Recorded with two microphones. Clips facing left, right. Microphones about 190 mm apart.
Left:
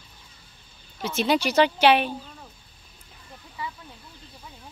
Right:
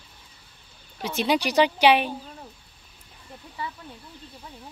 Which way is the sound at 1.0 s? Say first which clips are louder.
Left 1 dB; 15° right (ahead or behind).